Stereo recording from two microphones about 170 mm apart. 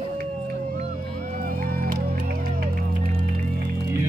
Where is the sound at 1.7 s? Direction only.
60° right (ahead or behind).